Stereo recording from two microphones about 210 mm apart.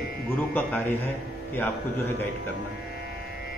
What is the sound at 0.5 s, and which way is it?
Speech, 10° left (ahead or behind).